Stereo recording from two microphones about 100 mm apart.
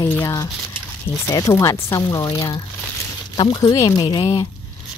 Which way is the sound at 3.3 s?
50° left (ahead or behind).